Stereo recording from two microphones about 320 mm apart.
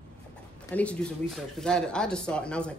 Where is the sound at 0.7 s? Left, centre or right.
Centre.